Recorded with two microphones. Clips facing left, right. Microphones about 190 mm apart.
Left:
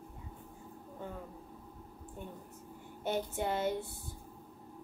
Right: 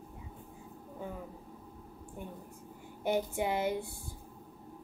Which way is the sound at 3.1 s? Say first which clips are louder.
Right 3 dB; 10° right (ahead or behind).